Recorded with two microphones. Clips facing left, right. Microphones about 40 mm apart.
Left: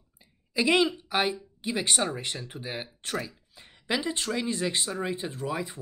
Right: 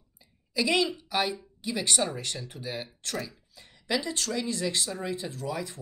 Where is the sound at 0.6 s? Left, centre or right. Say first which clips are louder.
Left 3 dB; left.